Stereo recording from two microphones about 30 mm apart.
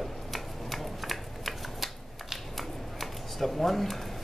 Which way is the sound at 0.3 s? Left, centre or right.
Centre.